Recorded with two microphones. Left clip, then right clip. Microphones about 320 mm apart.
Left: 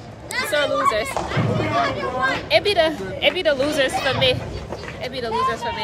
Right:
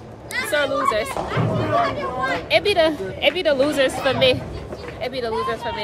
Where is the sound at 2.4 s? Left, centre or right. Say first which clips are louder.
Right 1 dB; centre.